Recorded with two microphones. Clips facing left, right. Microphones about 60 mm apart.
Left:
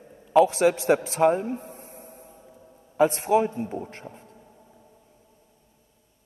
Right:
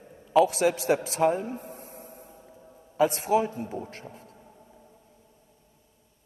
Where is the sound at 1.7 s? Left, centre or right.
Left.